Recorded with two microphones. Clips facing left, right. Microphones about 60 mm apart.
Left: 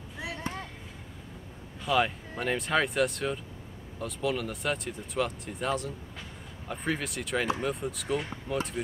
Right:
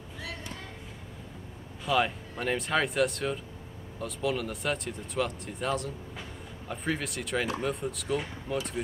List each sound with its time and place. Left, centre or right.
0.5 s chop: left
1.9 s speech: centre